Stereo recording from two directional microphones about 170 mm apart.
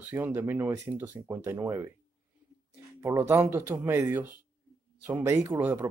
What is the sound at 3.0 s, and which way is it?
Speech, 15° right (ahead or behind).